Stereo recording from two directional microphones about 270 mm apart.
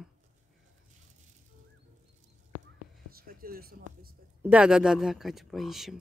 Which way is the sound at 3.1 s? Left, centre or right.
Right.